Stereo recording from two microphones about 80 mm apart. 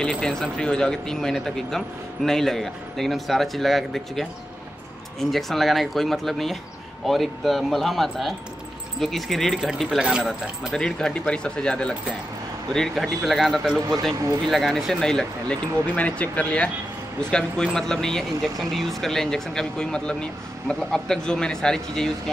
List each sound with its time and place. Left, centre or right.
0.0 s a man's voice: centre
10.7 s a man's voice: centre